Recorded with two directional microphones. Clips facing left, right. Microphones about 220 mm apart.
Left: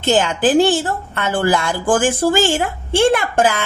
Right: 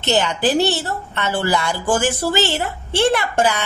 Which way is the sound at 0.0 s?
50° left (ahead or behind).